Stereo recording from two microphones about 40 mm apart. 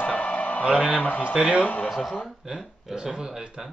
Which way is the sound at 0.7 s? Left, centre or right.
Centre.